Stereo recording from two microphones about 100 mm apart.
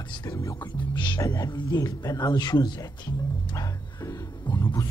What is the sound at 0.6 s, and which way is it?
Speech, 50° left (ahead or behind).